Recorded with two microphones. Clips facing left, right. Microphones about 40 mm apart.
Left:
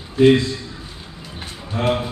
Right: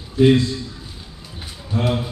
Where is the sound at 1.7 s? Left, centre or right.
Left.